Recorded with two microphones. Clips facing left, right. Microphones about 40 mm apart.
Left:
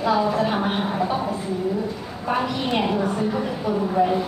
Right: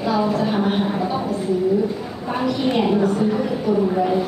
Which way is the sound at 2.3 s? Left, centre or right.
Centre.